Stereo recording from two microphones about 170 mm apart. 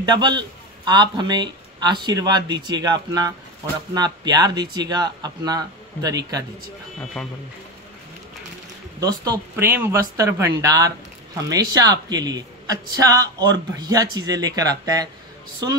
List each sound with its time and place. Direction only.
0.0 s a man's voice: 25° right (ahead or behind)
7.2 s speech: 5° left (ahead or behind)
9.0 s speech: 20° right (ahead or behind)